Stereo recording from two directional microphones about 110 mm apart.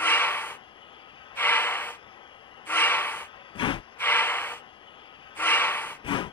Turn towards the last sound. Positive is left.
turn(degrees=50)  # may be behind; listen again after turning